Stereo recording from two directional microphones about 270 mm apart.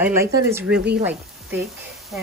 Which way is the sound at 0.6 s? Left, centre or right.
Right.